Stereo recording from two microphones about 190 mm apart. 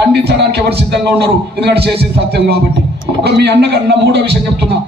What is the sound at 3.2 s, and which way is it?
A man's voice, 60° right (ahead or behind).